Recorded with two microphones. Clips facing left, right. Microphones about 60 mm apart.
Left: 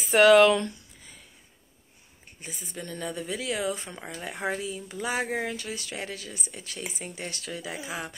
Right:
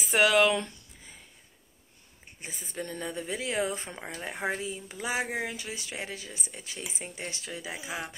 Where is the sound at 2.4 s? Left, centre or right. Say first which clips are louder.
Right 1 dB; right.